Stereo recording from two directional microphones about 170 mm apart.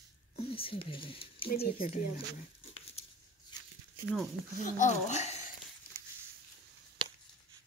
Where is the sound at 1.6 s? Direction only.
60° left (ahead or behind).